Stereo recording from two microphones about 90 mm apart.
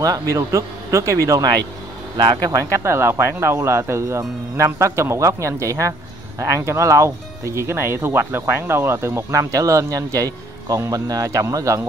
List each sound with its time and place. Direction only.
0.0 s speech: 40° right (ahead or behind)